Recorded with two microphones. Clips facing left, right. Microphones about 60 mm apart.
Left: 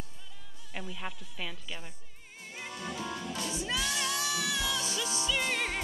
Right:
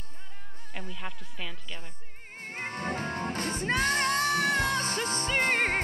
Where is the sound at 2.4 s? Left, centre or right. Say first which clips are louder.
Right 6 dB; right.